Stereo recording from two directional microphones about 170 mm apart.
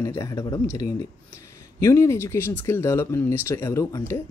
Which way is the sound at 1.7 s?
20° left (ahead or behind).